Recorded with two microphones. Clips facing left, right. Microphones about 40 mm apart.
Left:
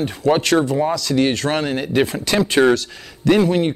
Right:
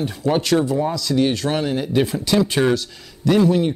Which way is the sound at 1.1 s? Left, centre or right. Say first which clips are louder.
Right 1 dB; left.